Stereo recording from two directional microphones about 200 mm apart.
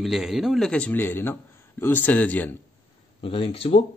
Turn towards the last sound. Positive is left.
turn(degrees=30)  # may be behind; listen again after turning